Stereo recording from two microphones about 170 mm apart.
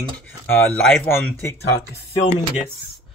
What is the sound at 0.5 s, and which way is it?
Speech, 10° left (ahead or behind).